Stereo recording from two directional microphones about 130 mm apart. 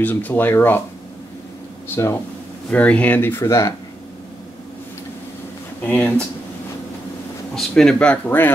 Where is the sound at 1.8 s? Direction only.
20° left (ahead or behind).